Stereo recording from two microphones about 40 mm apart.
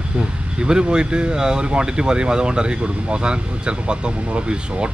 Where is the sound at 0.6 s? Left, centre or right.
Right.